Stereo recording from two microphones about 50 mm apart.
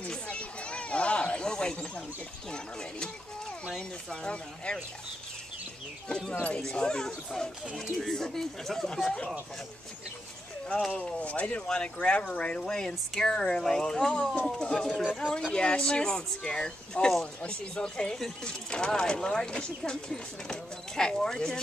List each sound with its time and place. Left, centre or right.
0.1 s a sound: left
2.5 s speech: centre
4.2 s speech: centre
6.7 s speech: centre
11.0 s speech: left